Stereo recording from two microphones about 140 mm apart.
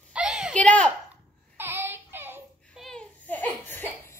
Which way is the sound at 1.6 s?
15° right (ahead or behind).